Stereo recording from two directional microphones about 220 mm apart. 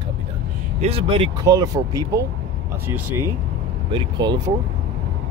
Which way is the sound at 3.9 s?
20° right (ahead or behind).